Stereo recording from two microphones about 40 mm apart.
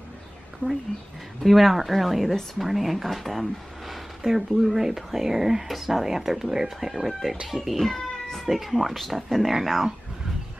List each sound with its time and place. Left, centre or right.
0.6 s speech: right
1.4 s speech: centre
8.5 s speech: centre